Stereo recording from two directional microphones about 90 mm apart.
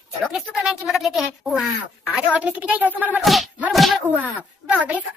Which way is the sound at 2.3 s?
15° right (ahead or behind).